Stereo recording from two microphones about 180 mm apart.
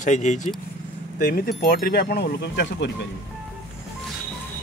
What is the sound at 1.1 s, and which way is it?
Speech, 50° left (ahead or behind).